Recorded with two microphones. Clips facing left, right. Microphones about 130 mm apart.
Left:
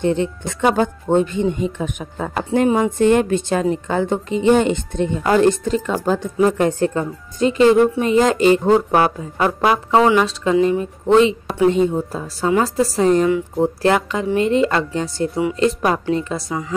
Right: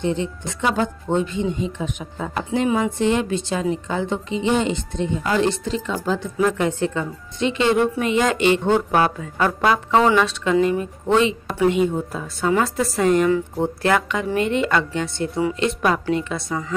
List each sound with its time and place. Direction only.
0.0 s speech: 55° left (ahead or behind); by 9.5 s 25° left (ahead or behind)
9.6 s music: 20° left (ahead or behind)
10.2 s a woman's voice: 30° left (ahead or behind)